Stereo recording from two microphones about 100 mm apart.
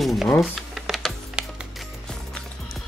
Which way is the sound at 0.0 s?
Centre (ahead or behind).